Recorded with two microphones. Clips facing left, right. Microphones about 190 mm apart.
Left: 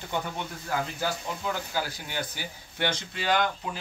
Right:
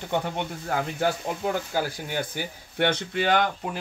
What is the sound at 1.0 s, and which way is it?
Speech, 50° right (ahead or behind).